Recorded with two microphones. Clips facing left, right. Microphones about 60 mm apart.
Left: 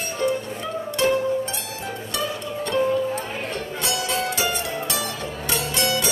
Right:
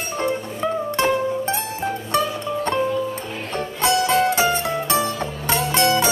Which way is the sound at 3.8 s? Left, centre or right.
Right.